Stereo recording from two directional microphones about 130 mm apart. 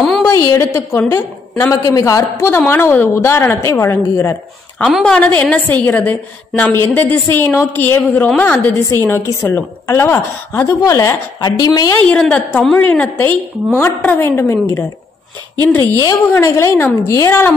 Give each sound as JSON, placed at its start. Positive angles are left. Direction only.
{"t": 0.6, "sound": "a woman's voice", "side_deg": 20}
{"t": 4.8, "sound": "a woman's voice", "side_deg": 5}
{"t": 12.1, "sound": "a woman's voice", "side_deg": 10}